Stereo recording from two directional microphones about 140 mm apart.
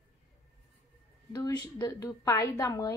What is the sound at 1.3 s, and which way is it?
A woman's voice, 30° left (ahead or behind).